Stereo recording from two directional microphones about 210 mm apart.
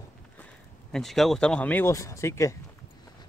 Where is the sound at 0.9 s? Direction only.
Centre (ahead or behind).